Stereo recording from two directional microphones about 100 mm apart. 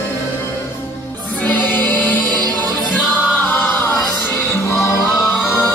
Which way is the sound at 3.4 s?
20° left (ahead or behind).